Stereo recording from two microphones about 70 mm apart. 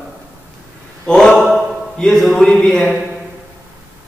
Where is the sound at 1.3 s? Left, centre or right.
Centre.